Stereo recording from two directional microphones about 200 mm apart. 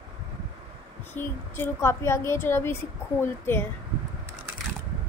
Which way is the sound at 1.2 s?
10° left (ahead or behind).